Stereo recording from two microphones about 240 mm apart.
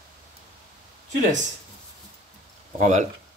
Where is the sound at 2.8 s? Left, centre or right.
Right.